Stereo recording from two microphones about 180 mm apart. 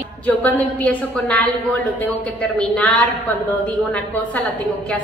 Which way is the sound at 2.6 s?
5° left (ahead or behind).